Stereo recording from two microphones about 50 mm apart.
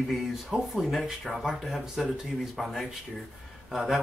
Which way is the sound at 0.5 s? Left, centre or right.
Centre.